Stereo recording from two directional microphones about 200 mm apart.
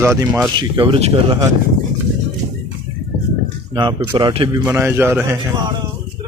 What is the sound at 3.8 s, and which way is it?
Speech, 20° right (ahead or behind).